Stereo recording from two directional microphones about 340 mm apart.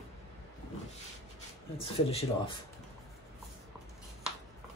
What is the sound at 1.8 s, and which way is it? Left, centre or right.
Speech, centre.